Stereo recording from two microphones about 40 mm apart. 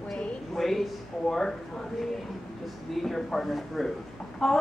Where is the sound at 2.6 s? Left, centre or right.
Centre.